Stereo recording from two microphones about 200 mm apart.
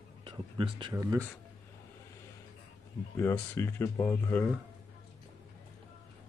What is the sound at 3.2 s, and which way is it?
Speech, 10° left (ahead or behind).